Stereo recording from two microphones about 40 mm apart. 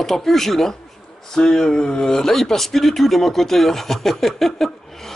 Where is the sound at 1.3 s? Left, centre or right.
Centre.